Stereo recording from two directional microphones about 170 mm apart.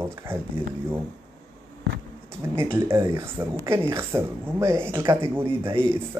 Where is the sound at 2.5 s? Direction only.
15° right (ahead or behind).